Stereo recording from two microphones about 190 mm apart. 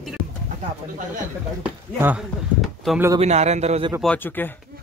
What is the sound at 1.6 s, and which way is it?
Speech, 10° right (ahead or behind).